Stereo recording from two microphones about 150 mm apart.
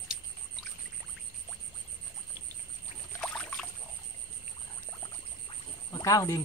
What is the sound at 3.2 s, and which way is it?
Rowboat, 5° left (ahead or behind).